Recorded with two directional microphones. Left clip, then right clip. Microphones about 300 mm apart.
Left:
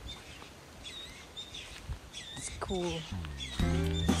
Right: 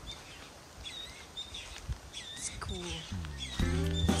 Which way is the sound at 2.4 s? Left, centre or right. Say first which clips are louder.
Left 8 dB; centre.